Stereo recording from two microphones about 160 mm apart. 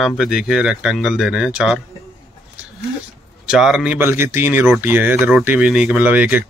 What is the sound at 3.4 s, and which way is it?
Speech, 5° right (ahead or behind).